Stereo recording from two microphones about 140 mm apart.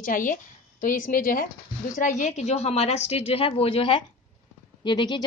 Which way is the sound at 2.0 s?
60° left (ahead or behind).